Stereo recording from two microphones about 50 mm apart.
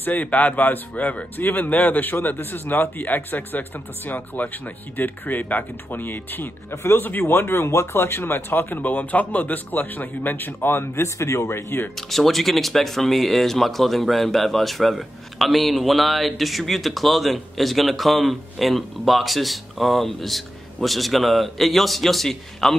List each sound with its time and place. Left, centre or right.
0.0 s speech: left
6.7 s speech: left
7.0 s a man's voice: left
7.7 s a man's voice: left
11.1 s speech: left
12.1 s speech: centre